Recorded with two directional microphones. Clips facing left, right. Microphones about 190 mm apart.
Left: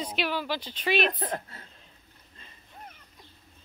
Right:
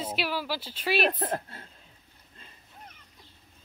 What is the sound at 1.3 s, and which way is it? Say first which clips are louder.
Speech: right 2 dB; 25° right (ahead or behind).